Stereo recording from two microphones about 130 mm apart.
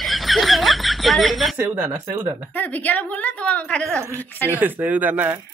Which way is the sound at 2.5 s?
15° left (ahead or behind).